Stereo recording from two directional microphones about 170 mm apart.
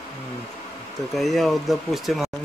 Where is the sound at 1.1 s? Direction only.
Centre (ahead or behind).